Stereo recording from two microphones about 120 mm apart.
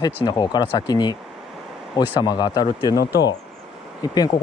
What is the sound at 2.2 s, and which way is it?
Speech, 35° left (ahead or behind).